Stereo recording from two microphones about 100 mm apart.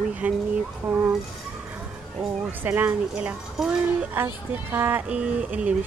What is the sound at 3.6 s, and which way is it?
Speech, 5° right (ahead or behind).